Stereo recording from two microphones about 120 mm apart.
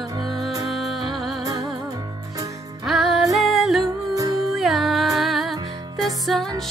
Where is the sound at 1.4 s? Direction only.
30° right (ahead or behind).